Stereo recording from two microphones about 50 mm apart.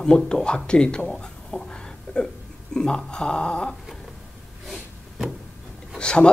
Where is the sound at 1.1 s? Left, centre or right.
Centre.